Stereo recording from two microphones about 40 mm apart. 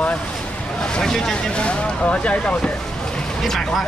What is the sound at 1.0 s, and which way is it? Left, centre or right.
Speech, centre.